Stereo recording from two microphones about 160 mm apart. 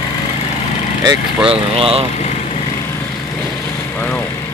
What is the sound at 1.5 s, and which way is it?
Speech, 35° right (ahead or behind).